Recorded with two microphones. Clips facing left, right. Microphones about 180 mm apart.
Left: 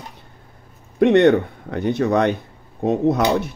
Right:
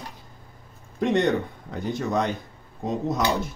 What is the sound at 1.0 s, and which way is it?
Speech, 65° left (ahead or behind).